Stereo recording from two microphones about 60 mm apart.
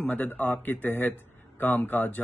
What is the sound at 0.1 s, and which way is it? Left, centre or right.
Speech, left.